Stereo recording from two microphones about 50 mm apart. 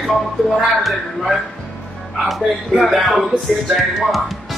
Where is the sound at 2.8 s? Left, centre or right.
Centre.